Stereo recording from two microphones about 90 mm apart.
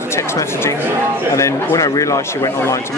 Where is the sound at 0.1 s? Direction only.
30° left (ahead or behind).